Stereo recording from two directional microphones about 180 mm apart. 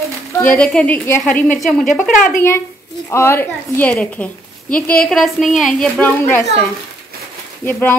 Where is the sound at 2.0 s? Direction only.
50° left (ahead or behind).